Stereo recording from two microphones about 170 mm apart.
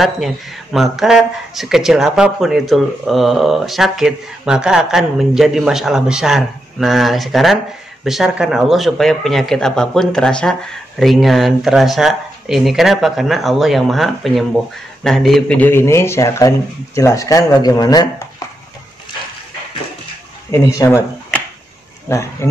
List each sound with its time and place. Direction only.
0.7 s speech: 5° right (ahead or behind); by 18.3 s 20° left (ahead or behind)
20.5 s speech: 20° left (ahead or behind)